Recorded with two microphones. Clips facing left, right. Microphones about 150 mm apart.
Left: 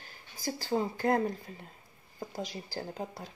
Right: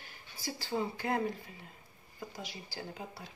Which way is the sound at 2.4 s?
40° left (ahead or behind).